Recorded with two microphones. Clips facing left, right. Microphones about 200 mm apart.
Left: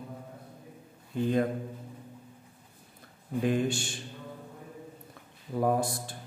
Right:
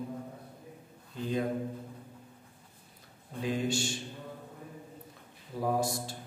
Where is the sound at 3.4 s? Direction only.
55° left (ahead or behind).